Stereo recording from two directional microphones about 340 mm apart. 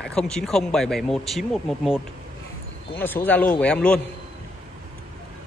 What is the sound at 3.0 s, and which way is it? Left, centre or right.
Speech, centre.